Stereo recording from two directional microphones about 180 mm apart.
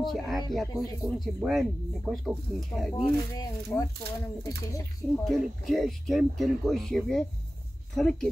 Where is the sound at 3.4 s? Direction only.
20° left (ahead or behind).